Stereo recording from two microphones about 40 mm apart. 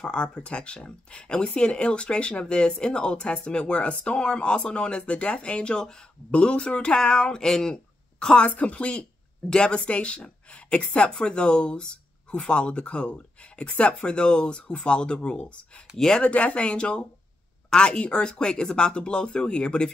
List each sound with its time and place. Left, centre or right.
0.0 s speech: left
8.4 s speech: left
9.8 s a woman's voice: left
14.0 s speech: left
16.2 s speech: left